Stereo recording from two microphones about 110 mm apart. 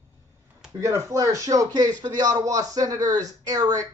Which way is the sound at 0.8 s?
30° right (ahead or behind).